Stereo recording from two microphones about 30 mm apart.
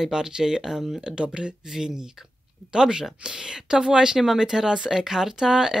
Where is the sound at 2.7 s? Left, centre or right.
Right.